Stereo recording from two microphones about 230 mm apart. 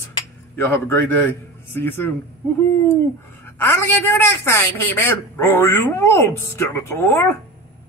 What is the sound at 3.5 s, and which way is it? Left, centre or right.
A man's voice, centre.